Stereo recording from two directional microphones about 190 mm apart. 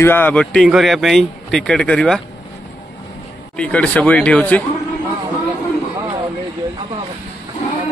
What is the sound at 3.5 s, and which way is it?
A man's voice, 5° left (ahead or behind).